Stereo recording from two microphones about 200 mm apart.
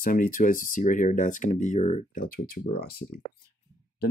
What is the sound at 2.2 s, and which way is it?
Speech, 45° left (ahead or behind).